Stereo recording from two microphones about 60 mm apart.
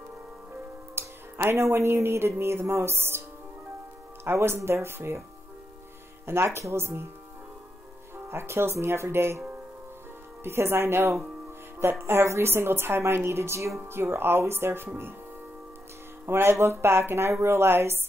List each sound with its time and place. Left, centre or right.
0.9 s a woman's voice: right
6.2 s a woman's voice: right
8.3 s a woman's voice: right
10.4 s a woman's voice: right
16.3 s a woman's voice: right